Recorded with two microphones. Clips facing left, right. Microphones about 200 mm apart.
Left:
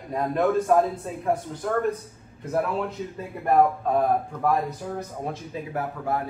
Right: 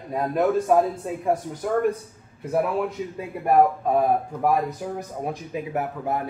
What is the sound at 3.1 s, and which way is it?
Speech, 10° right (ahead or behind).